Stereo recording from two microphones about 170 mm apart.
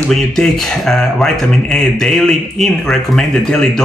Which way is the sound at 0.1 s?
5° left (ahead or behind).